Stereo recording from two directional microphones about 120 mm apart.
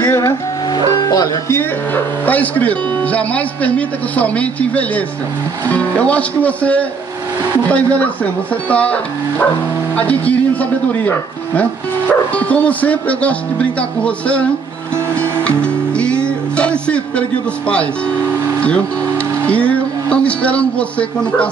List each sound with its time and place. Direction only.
0.0 s music: 25° left (ahead or behind)
2.2 s speech: 15° left (ahead or behind)
15.1 s music: 10° left (ahead or behind)
17.6 s speech: 10° left (ahead or behind)
19.4 s a man's voice: 10° left (ahead or behind)